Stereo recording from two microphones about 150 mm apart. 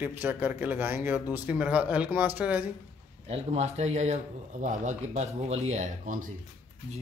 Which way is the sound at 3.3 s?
45° right (ahead or behind).